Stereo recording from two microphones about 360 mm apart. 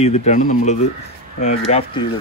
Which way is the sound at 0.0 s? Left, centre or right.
Centre.